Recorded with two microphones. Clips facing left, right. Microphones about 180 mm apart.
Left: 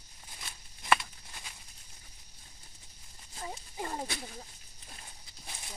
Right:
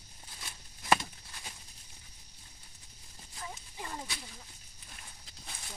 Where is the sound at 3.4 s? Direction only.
35° left (ahead or behind).